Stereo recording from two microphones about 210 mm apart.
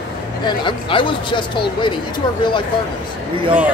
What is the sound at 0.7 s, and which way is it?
Speech, 25° left (ahead or behind).